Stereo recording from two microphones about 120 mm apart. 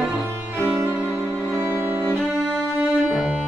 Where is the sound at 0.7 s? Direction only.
15° right (ahead or behind).